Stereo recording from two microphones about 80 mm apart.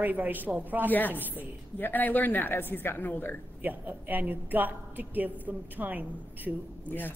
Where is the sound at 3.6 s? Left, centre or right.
Right.